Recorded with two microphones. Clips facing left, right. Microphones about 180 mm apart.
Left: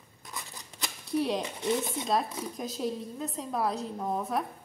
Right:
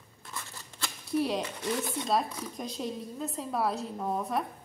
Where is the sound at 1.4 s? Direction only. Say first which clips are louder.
Left 2 dB; 20° left (ahead or behind).